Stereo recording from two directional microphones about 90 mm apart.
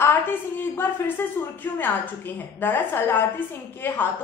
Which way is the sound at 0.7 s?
25° left (ahead or behind).